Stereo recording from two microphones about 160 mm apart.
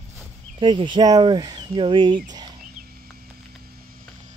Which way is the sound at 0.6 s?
30° right (ahead or behind).